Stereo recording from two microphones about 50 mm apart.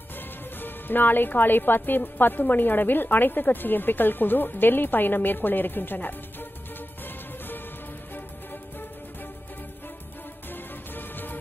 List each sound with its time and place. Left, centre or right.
0.6 s a woman's voice: left
10.5 s music: left